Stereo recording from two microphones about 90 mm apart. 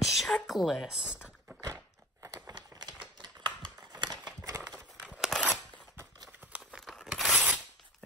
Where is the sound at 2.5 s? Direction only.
45° right (ahead or behind).